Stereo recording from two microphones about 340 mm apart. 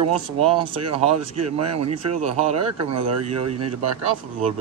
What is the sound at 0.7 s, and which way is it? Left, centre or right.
Speech, right.